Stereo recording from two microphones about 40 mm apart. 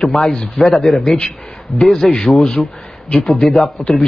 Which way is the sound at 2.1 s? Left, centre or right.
Centre.